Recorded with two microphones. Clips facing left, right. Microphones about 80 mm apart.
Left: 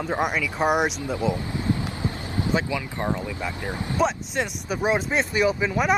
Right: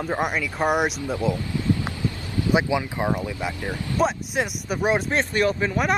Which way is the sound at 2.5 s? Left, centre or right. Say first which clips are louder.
Right 6 dB; centre.